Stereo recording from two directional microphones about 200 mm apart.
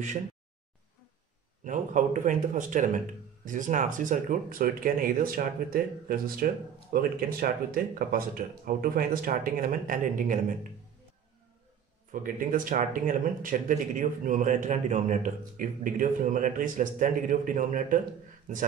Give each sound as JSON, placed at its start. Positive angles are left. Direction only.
{"t": 1.6, "sound": "speech", "side_deg": -40}
{"t": 12.1, "sound": "speech", "side_deg": -40}